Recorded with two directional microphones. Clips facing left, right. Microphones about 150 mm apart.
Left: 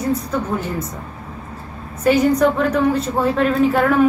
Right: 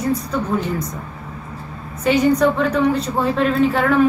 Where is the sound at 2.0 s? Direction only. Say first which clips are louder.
Left 1 dB; 10° left (ahead or behind).